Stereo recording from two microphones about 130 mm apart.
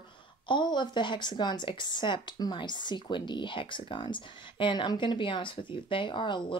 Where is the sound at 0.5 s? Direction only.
35° left (ahead or behind).